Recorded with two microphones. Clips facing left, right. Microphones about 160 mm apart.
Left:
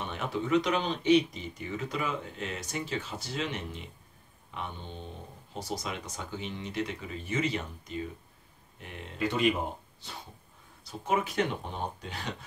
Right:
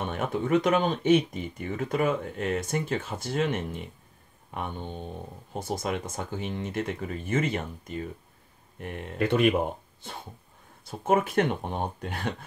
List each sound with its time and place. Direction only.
0.0 s speech: 50° right (ahead or behind)